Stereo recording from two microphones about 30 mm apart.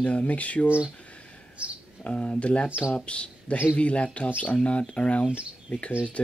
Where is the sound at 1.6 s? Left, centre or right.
Right.